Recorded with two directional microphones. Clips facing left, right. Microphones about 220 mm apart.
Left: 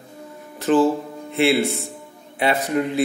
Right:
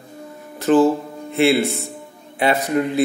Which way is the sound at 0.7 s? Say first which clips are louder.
Right 3 dB; 40° right (ahead or behind).